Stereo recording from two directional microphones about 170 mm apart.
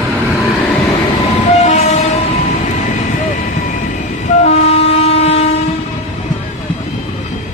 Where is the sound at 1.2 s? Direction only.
40° left (ahead or behind).